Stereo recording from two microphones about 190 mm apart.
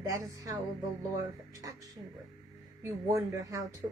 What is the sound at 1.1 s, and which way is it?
Speech, 15° right (ahead or behind).